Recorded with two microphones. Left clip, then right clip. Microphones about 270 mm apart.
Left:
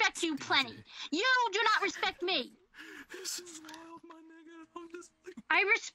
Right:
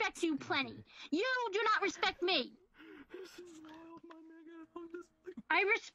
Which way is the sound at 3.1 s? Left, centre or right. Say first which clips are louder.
Left 9 dB; left.